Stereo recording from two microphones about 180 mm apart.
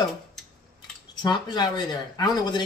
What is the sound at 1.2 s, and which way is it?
Speech, 25° left (ahead or behind).